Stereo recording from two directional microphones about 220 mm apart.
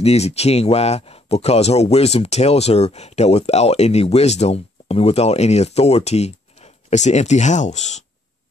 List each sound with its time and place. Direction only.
0.0 s speech: 30° left (ahead or behind)